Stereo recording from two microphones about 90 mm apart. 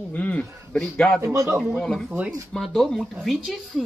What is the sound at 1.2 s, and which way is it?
Speech, 35° right (ahead or behind).